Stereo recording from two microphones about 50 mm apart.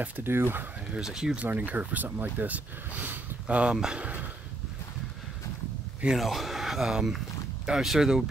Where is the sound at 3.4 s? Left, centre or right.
Right.